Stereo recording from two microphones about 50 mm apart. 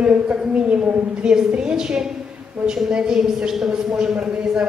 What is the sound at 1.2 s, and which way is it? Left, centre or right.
A woman's voice, centre.